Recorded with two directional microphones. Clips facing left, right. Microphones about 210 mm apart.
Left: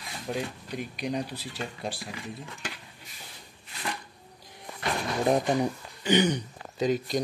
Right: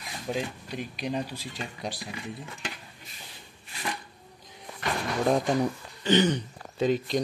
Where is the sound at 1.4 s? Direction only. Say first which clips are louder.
Left 1 dB; 5° left (ahead or behind).